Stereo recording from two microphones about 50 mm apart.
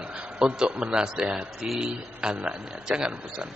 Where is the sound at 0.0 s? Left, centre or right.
Centre.